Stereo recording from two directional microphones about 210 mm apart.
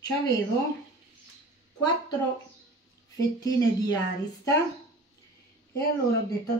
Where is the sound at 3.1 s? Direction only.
15° left (ahead or behind).